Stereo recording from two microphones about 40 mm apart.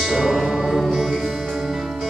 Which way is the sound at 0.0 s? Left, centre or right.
Centre.